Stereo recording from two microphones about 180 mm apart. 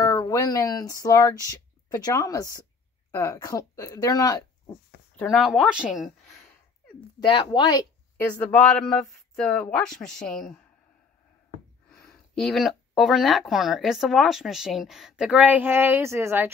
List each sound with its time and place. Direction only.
0.0 s speech: 20° left (ahead or behind)
5.1 s speech: 5° left (ahead or behind)
7.2 s speech: 25° left (ahead or behind)
8.4 s speech: 5° left (ahead or behind)
11.9 s speech: 5° left (ahead or behind); by 16.5 s 15° right (ahead or behind)